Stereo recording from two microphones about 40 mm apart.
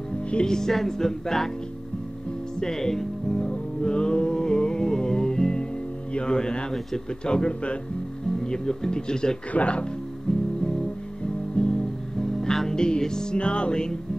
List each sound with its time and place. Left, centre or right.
0.3 s music: centre
2.6 s music: centre
6.1 s speech: centre
8.4 s music: centre
9.5 s speech: left
11.5 s music: centre